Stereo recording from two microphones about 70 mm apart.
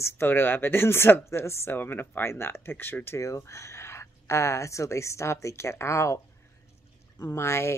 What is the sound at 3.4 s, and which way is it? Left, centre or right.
A woman's voice, left.